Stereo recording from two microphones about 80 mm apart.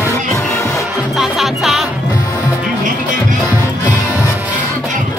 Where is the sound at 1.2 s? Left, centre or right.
Centre.